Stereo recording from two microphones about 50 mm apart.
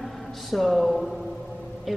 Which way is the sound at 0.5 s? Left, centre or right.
Centre.